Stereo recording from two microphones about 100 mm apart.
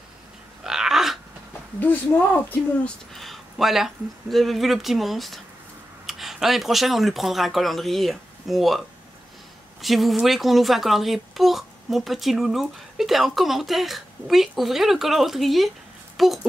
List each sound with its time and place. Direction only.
0.7 s a sound: 5° right (ahead or behind)
1.8 s speech: 20° left (ahead or behind)
3.2 s a woman's voice: centre (ahead or behind)